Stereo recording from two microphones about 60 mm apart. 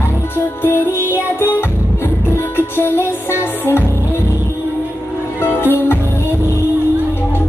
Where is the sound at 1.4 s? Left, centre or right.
Left.